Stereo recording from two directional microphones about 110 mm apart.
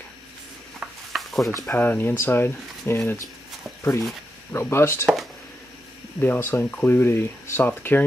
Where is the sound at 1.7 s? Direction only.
20° left (ahead or behind).